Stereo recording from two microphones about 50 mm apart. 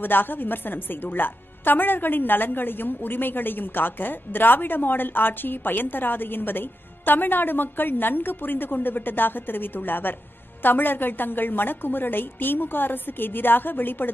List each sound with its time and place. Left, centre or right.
0.0 s a woman's voice: left